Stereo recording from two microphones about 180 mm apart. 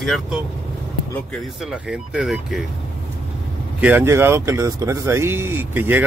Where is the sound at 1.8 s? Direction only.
5° right (ahead or behind).